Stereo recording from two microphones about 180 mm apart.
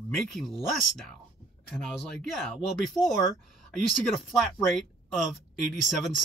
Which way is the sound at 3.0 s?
15° left (ahead or behind).